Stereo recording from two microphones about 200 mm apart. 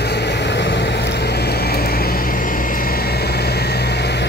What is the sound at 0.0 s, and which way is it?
Vehicle, 55° left (ahead or behind).